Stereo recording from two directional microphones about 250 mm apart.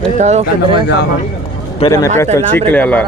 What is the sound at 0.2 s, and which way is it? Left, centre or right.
Speech, right.